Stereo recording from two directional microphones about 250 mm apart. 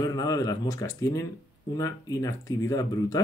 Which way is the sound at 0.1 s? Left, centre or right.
Centre.